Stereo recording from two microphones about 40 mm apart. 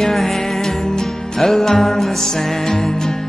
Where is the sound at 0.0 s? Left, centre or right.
Centre.